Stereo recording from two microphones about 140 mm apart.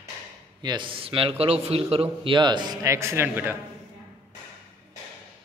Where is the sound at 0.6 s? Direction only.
35° right (ahead or behind); by 3.6 s 15° right (ahead or behind).